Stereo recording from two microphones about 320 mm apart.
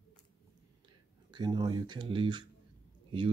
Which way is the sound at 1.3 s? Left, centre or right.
Centre.